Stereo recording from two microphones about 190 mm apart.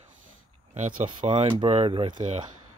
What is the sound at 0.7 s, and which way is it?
Speech, 45° right (ahead or behind).